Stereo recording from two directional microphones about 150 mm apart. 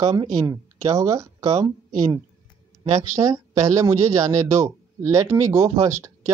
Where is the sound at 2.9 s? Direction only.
25° right (ahead or behind).